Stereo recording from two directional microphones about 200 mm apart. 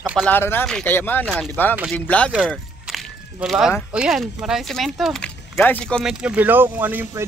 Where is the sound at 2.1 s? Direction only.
5° left (ahead or behind).